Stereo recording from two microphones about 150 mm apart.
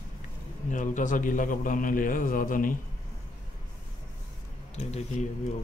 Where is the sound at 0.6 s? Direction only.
60° left (ahead or behind).